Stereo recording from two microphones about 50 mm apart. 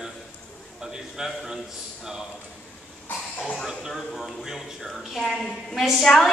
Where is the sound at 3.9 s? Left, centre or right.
Centre.